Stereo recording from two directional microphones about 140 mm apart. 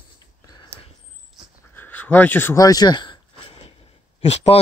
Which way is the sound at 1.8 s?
15° left (ahead or behind).